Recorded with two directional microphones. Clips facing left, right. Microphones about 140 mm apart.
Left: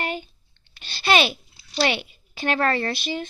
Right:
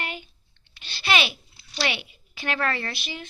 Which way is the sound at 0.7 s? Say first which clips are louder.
Left 5 dB; 40° left (ahead or behind).